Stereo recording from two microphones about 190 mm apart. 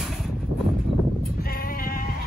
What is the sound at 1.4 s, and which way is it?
Sheep, 50° left (ahead or behind).